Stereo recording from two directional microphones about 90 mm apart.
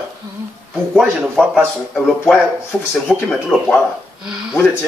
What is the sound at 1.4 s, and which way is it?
Speech, 10° left (ahead or behind).